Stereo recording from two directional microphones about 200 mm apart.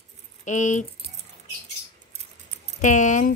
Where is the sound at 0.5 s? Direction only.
40° left (ahead or behind).